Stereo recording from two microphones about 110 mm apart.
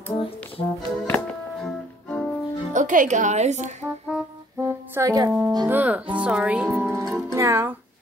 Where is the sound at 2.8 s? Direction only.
90° right.